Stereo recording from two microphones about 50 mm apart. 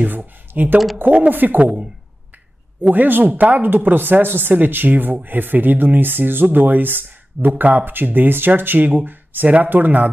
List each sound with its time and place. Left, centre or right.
0.5 s speech: right
2.8 s speech: right